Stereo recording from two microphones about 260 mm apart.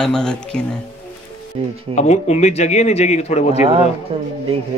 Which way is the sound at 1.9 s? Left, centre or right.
Left.